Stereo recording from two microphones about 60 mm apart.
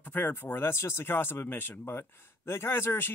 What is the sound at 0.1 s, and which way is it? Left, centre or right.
Speech, left.